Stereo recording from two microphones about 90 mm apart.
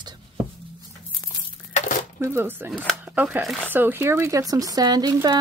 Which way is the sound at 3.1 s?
15° right (ahead or behind).